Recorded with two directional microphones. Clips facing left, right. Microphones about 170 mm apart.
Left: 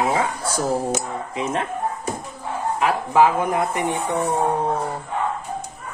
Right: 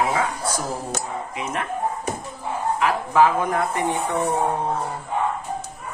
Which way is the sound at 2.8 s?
20° left (ahead or behind).